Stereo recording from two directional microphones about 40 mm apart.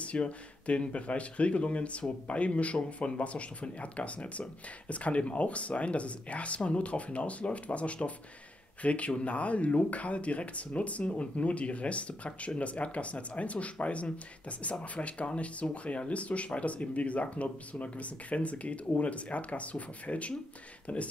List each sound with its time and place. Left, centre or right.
0.0 s speech: left